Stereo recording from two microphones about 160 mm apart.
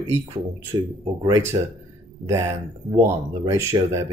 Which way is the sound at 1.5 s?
30° right (ahead or behind).